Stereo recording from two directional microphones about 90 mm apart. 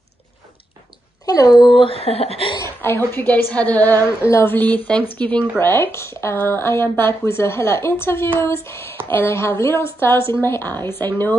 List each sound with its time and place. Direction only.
1.2 s speech: 40° left (ahead or behind)
1.8 s speech: 90° left
2.6 s a woman's voice: 25° left (ahead or behind)